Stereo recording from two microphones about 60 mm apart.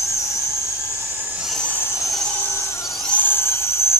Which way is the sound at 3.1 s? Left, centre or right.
Left.